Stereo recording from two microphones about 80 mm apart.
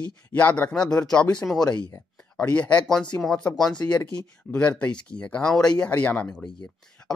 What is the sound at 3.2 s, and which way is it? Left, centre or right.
Speech, centre.